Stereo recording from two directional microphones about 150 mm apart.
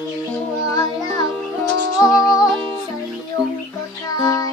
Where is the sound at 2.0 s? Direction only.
25° left (ahead or behind).